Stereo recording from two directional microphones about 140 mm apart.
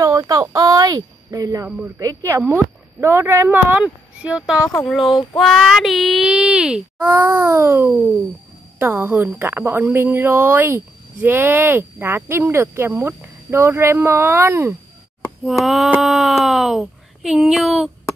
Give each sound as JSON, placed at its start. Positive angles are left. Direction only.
{"t": 0.0, "sound": "speech", "side_deg": -25}
{"t": 5.0, "sound": "child singing", "side_deg": 30}
{"t": 5.4, "sound": "speech", "side_deg": 5}
{"t": 7.0, "sound": "speech", "side_deg": -20}
{"t": 15.4, "sound": "speech", "side_deg": 0}